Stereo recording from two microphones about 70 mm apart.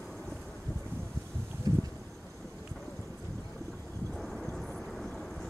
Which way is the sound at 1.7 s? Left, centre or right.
Right.